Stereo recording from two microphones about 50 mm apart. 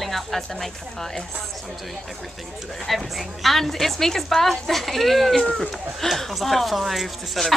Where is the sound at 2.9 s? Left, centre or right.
Centre.